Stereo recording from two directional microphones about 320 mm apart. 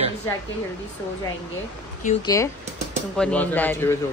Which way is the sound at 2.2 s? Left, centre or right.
Centre.